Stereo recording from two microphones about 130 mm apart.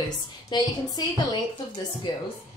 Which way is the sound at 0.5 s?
30° left (ahead or behind).